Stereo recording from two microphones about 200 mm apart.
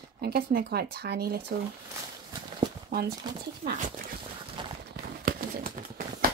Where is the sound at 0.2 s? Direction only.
50° right (ahead or behind).